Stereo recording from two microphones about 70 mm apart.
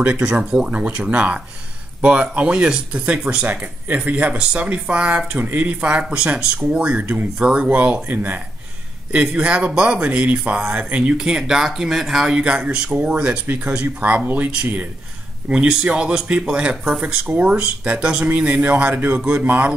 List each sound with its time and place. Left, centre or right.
0.0 s a man's voice: centre
9.1 s a man's voice: centre